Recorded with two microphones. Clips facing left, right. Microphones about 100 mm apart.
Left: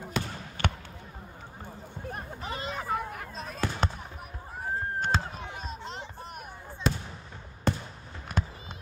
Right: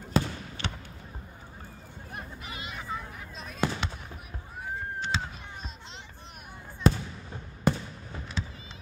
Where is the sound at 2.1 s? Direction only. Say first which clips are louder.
Left 2 dB; 35° left (ahead or behind).